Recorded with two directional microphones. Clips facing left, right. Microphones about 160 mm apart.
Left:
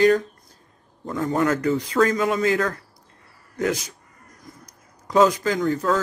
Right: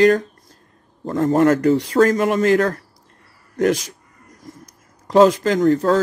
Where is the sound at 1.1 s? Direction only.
45° right (ahead or behind).